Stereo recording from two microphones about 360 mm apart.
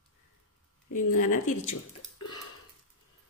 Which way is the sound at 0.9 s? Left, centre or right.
Left.